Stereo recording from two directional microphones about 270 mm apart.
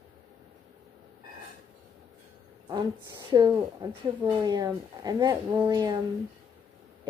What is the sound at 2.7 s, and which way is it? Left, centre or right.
A woman's voice, centre.